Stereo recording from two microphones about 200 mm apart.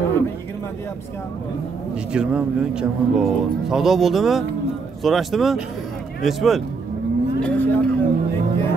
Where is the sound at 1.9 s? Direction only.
5° right (ahead or behind).